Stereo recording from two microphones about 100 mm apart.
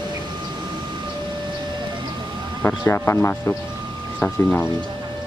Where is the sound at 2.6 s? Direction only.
15° left (ahead or behind).